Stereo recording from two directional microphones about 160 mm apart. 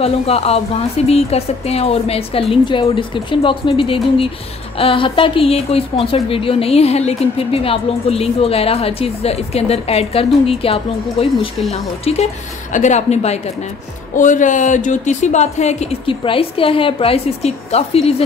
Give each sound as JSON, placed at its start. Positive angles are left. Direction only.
{"t": 0.0, "sound": "speech", "side_deg": 40}
{"t": 14.1, "sound": "speech", "side_deg": 55}